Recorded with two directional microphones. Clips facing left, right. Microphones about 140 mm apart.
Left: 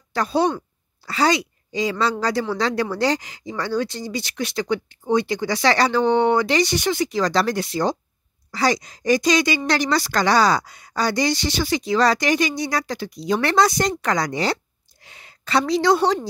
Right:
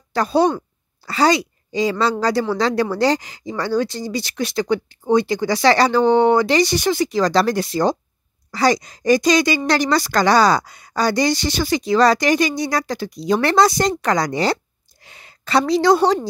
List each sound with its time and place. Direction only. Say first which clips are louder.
0.1 s a woman's voice: right 4 dB; 40° right (ahead or behind)